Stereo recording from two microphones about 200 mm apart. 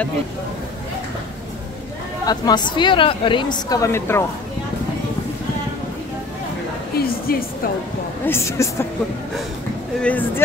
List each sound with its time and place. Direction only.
2.2 s a woman's voice: 20° left (ahead or behind)
6.9 s speech: 50° left (ahead or behind)
8.3 s speech: 15° left (ahead or behind)
10.0 s speech: 10° left (ahead or behind)